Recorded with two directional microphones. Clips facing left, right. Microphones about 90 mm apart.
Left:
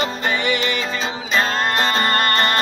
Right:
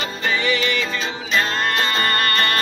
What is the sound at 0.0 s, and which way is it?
Music, 30° left (ahead or behind).